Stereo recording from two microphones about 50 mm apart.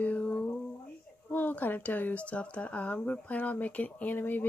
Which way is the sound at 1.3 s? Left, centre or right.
Left.